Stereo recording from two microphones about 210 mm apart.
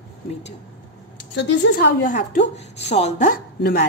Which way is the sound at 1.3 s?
45° left (ahead or behind).